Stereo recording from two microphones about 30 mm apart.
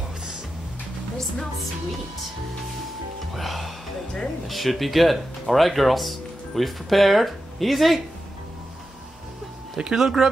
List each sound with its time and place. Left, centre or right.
1.1 s music: centre
3.3 s speech: centre
9.9 s speech: centre